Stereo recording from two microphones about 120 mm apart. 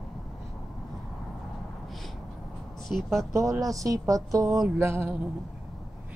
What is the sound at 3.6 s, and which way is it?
A woman's voice, 30° right (ahead or behind).